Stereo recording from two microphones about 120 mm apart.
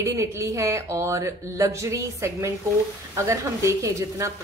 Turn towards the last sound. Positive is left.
turn(degrees=-25)  # may be behind; listen again after turning